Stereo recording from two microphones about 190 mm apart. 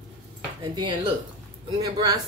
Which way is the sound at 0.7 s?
25° right (ahead or behind).